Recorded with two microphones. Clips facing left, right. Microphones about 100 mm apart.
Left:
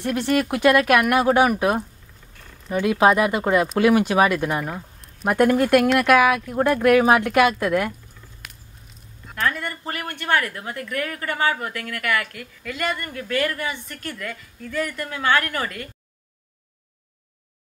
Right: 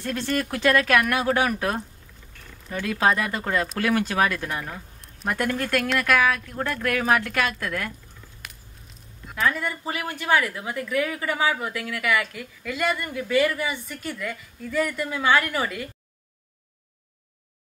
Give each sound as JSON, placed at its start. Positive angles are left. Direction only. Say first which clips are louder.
{"t": 0.0, "sound": "speech", "louder": "left 5 dB", "side_deg": 15}
{"t": 8.4, "sound": "a sound", "louder": "even", "side_deg": 0}
{"t": 9.3, "sound": "speech", "louder": "even", "side_deg": -5}